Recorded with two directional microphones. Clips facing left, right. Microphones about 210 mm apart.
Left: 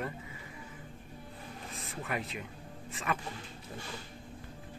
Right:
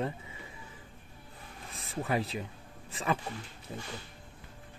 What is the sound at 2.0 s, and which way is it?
Speech, 30° right (ahead or behind).